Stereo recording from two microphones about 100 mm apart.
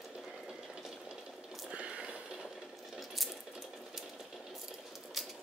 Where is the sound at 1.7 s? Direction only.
10° right (ahead or behind).